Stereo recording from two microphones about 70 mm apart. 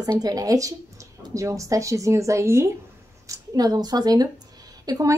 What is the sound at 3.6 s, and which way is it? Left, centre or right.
Speech, right.